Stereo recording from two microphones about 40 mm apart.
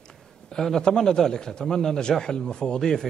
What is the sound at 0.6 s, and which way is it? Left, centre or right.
A man's voice, centre.